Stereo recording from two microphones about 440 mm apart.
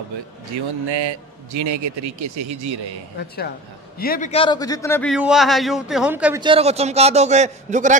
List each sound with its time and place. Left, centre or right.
0.8 s a man's voice: right
3.2 s a man's voice: left; by 8.0 s centre